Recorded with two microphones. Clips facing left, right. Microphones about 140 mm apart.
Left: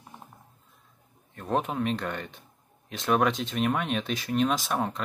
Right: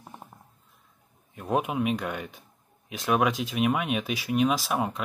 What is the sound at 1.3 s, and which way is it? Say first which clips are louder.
Speech: right 1 dB; 10° right (ahead or behind).